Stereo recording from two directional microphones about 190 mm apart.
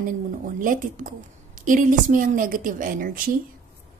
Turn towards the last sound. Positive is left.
turn(degrees=-45)  # may be behind; listen again after turning